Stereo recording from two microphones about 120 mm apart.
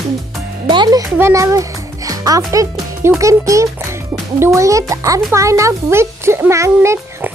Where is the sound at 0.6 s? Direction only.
40° right (ahead or behind).